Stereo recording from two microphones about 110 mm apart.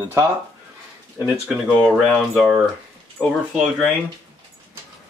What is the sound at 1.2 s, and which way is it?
Speech, 10° right (ahead or behind).